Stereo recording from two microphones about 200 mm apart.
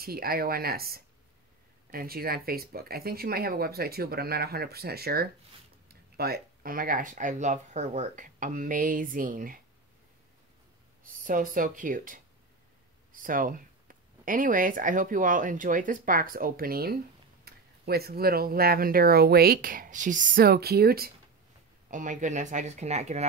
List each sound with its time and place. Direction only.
0.0 s speech: 50° right (ahead or behind)
11.1 s speech: 45° right (ahead or behind)
21.9 s speech: 40° right (ahead or behind)